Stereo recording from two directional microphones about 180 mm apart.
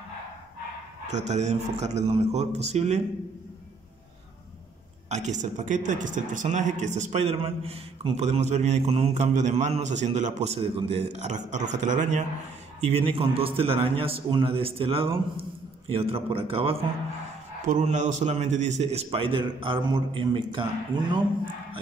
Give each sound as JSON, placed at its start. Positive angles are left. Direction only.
{"t": 1.0, "sound": "speech", "side_deg": -40}
{"t": 5.1, "sound": "speech", "side_deg": -40}
{"t": 12.8, "sound": "speech", "side_deg": -30}
{"t": 17.6, "sound": "speech", "side_deg": -45}